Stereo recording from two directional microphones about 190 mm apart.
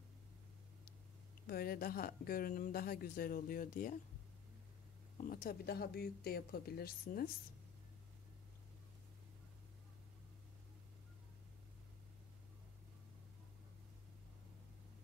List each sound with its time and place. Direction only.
1.5 s a woman's voice: 50° left (ahead or behind)
5.1 s speech: 50° left (ahead or behind)